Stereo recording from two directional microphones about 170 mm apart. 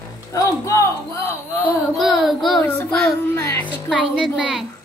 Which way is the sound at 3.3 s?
15° left (ahead or behind).